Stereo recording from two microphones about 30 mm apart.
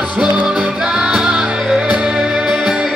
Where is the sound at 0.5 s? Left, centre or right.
Right.